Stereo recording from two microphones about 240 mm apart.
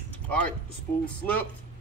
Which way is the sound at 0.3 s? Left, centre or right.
Centre.